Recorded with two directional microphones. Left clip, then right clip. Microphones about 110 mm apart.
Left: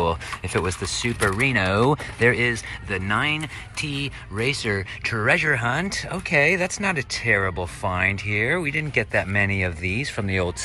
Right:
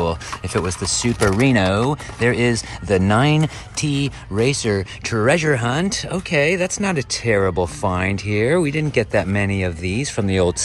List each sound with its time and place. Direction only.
0.0 s speech: 20° right (ahead or behind)
1.8 s speech: 15° right (ahead or behind)
3.2 s speech: 30° right (ahead or behind)